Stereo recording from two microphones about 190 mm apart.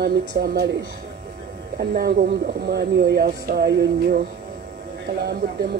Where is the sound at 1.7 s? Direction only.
55° right (ahead or behind).